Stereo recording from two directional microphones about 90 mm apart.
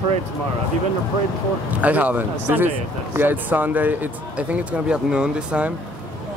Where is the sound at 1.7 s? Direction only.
15° right (ahead or behind).